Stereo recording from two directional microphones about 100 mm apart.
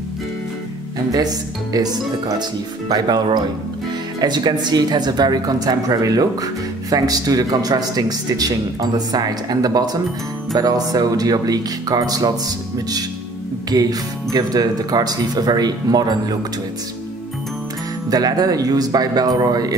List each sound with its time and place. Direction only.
1.1 s speech: 40° right (ahead or behind)
4.2 s speech: 45° right (ahead or behind)
18.1 s speech: 40° right (ahead or behind)